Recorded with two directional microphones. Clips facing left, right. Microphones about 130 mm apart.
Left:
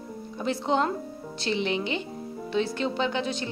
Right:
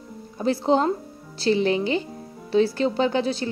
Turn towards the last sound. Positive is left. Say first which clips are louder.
# right 5 dB
turn(degrees=-35)  # may be behind; listen again after turning